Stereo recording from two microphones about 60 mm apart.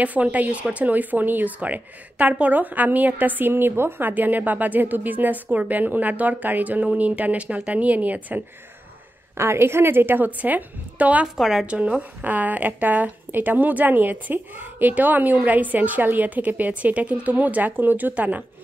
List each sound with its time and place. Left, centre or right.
0.0 s speech: right
9.4 s a woman's voice: right
11.3 s speech: centre
11.6 s speech: right